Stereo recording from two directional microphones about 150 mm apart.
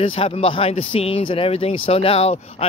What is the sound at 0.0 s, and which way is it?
Speech, 40° left (ahead or behind).